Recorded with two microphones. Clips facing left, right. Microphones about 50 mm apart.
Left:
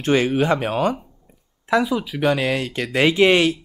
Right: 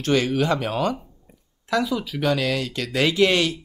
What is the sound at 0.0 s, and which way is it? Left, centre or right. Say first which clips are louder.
Speech: left 3 dB; left.